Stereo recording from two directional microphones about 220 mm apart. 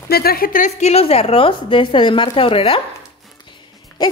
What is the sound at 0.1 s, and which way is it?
Speech, 45° left (ahead or behind).